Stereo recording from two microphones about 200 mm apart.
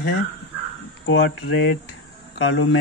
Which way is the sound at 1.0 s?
65° left (ahead or behind).